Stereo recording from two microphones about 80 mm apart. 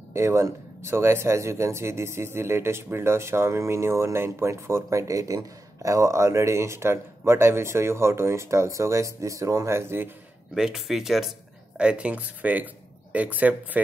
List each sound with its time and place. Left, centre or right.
0.1 s speech: right
10.5 s speech: centre